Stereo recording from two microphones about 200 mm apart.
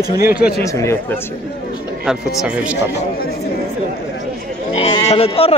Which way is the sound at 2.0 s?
Centre (ahead or behind).